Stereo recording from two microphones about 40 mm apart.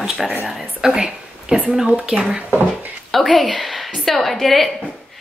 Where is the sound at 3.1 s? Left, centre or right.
Centre.